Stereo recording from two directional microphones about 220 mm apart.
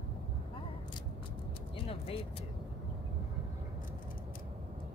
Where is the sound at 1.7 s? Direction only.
25° left (ahead or behind).